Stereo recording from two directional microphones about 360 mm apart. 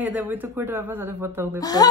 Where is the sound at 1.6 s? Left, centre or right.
Centre.